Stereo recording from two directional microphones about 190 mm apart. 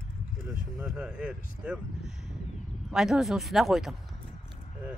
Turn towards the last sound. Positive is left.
turn(degrees=0)  # may be behind; listen again after turning